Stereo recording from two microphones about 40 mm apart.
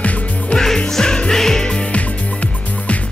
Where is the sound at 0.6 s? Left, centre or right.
Centre.